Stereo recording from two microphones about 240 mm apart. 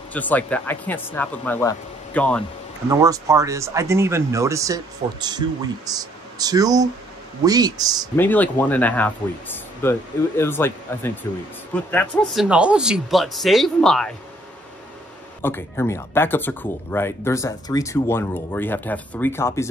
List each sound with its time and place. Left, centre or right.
0.1 s speech: centre
2.9 s speech: centre
8.2 s speech: centre
15.4 s speech: centre